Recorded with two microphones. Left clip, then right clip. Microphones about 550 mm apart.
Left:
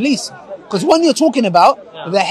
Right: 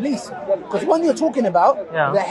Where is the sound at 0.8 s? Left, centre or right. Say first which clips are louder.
Left 7 dB; left.